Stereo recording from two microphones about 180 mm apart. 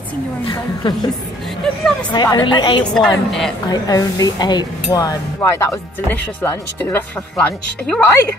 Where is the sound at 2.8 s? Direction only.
5° left (ahead or behind).